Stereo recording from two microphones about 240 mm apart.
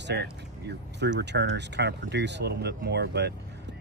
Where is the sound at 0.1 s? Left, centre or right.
Right.